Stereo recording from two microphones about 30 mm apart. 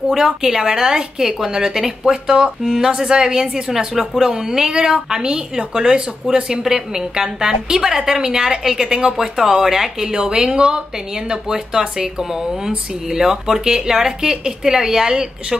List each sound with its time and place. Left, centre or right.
0.2 s a woman's voice: centre
6.6 s a woman's voice: centre
14.2 s a woman's voice: right